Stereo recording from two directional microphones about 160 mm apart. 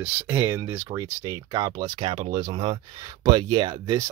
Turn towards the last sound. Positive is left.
turn(degrees=-25)  # may be behind; listen again after turning